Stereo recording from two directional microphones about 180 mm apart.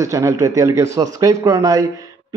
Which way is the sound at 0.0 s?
15° right (ahead or behind).